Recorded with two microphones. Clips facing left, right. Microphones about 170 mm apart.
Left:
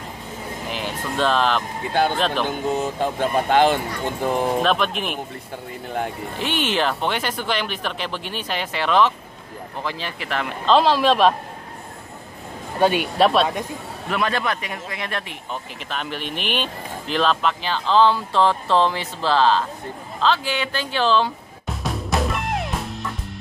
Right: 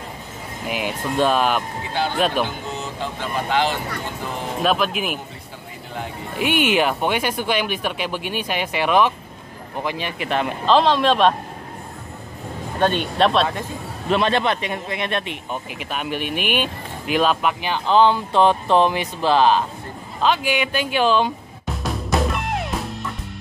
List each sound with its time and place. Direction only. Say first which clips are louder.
0.7 s speech: right 4 dB; 10° right (ahead or behind)
1.9 s speech: left 5 dB; 50° left (ahead or behind)
2.1 s speech: right 2 dB; 10° right (ahead or behind)
2.4 s speech: left 5 dB; 50° left (ahead or behind)
4.6 s speech: right 1 dB; 5° right (ahead or behind)
6.3 s speech: right 5 dB; 10° right (ahead or behind)
10.6 s speech: left 1 dB; centre (ahead or behind)
12.7 s speech: left 1 dB; 10° left (ahead or behind)
14.0 s speech: right 4 dB; 25° right (ahead or behind)
21.6 s music: right 1 dB; centre (ahead or behind)